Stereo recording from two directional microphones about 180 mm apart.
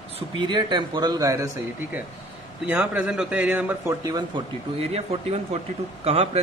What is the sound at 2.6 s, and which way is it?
A man's voice, 10° right (ahead or behind).